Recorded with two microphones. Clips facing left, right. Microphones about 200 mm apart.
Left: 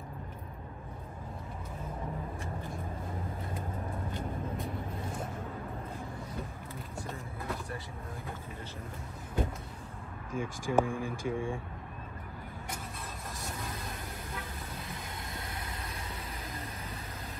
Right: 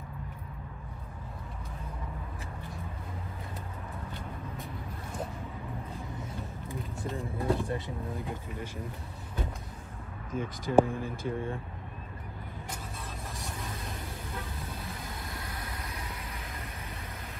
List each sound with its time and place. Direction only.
7.2 s vehicle: 30° right (ahead or behind)
10.3 s speech: 10° left (ahead or behind)
15.3 s vehicle: 25° left (ahead or behind)